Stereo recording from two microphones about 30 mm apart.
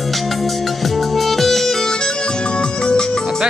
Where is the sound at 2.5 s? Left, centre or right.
Left.